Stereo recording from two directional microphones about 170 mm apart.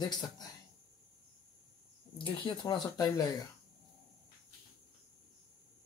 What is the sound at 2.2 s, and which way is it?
Speech, 30° left (ahead or behind).